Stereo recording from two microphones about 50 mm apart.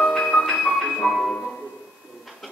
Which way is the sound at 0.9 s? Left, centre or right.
Centre.